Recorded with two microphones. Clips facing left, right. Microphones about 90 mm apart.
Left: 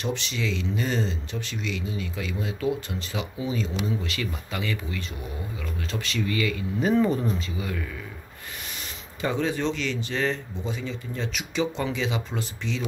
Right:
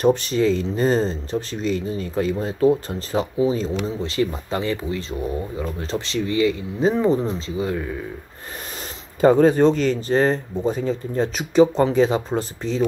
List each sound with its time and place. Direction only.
0.0 s speech: 40° right (ahead or behind)
9.2 s speech: 45° right (ahead or behind)